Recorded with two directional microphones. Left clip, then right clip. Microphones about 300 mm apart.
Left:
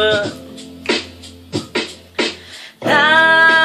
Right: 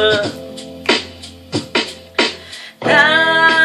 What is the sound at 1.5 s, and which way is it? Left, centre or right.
Music, right.